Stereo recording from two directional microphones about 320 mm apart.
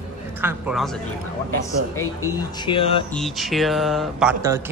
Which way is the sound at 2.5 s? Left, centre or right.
Centre.